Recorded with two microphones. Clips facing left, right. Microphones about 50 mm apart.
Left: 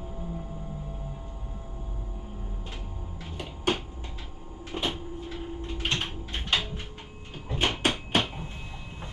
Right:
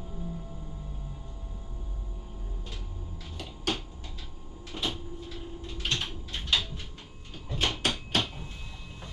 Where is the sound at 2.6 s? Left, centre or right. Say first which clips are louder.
Left 3 dB; left.